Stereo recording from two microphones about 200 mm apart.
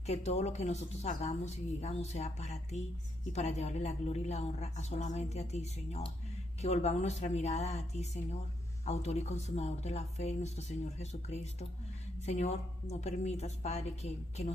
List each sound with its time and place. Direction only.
0.0 s a woman's voice: 35° left (ahead or behind)